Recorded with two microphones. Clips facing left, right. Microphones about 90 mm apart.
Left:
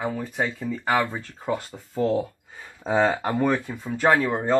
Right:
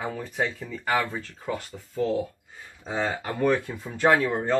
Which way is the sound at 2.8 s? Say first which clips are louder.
Left 7 dB; 65° left (ahead or behind).